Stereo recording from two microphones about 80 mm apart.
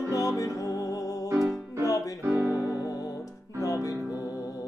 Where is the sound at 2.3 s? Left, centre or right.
Right.